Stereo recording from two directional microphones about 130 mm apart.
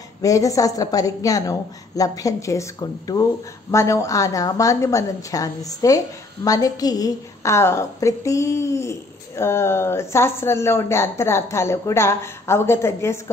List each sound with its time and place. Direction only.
0.2 s a woman's voice: 25° left (ahead or behind)